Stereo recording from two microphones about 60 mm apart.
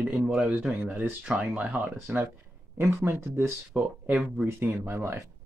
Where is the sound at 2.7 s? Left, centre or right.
Right.